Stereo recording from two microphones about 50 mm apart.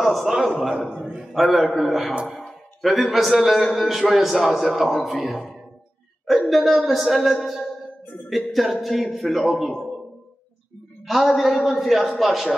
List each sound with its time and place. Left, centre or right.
0.0 s a man's voice: centre
0.7 s a man's voice: centre
1.2 s a man's voice: centre
6.5 s a man's voice: centre
7.4 s music: centre
8.3 s a man's voice: centre
11.1 s a man's voice: centre